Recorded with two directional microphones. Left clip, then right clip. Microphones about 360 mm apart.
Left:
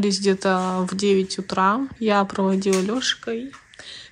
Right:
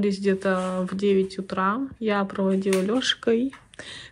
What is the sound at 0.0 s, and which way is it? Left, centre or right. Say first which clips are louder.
Speech: left 3 dB; centre.